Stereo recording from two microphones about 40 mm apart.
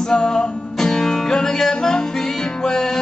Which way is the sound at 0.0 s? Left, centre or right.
Centre.